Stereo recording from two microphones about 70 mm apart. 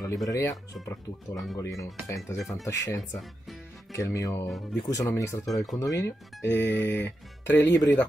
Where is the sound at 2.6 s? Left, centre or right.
Left.